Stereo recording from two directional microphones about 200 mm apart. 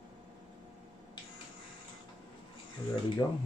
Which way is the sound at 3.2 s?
5° left (ahead or behind).